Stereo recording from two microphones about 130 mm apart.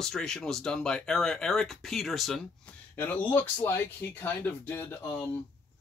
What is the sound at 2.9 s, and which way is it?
Speech, 15° left (ahead or behind).